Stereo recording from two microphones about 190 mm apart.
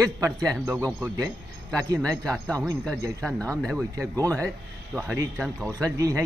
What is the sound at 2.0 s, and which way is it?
Speech, centre (ahead or behind).